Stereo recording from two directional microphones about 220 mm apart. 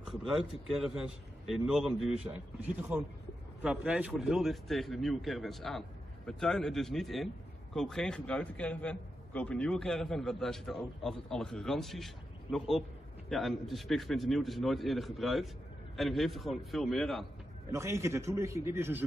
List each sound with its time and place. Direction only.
0.0 s a man's voice: centre (ahead or behind)
17.6 s a man's voice: 15° right (ahead or behind)